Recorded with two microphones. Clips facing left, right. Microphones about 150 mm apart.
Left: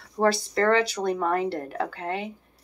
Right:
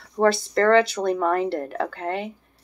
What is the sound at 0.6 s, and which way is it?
Speech, 15° left (ahead or behind).